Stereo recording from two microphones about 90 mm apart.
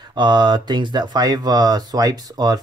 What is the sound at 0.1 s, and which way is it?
Speech, 55° right (ahead or behind).